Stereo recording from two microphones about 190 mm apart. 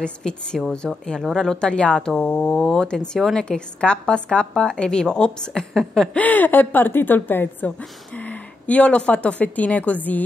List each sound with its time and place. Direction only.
0.0 s a woman's voice: 5° left (ahead or behind)